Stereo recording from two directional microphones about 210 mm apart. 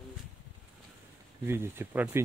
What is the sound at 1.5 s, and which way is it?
Speech, 10° right (ahead or behind).